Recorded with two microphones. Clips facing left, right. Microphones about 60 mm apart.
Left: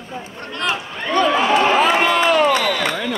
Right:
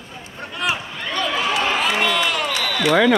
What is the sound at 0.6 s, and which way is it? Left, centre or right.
Speech, centre.